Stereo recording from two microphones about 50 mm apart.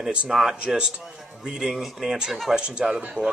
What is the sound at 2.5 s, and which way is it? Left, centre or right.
Speech, centre.